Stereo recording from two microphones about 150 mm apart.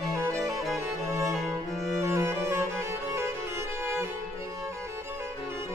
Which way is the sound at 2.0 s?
20° right (ahead or behind).